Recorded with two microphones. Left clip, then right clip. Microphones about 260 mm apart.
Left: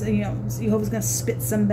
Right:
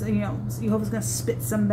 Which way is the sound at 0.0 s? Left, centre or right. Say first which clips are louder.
Left 2 dB; left.